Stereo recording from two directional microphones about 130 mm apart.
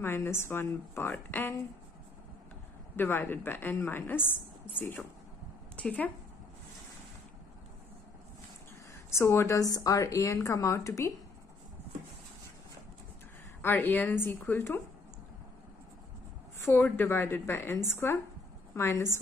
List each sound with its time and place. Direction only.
0.0 s speech: 20° left (ahead or behind)
3.0 s speech: 15° left (ahead or behind)
8.9 s a woman's voice: 20° left (ahead or behind)
13.6 s speech: 15° left (ahead or behind)
16.5 s a woman's voice: 15° left (ahead or behind)